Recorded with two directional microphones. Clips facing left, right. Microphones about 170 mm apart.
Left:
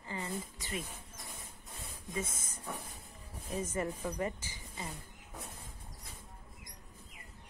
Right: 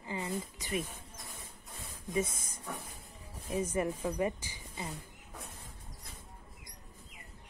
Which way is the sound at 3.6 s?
10° right (ahead or behind).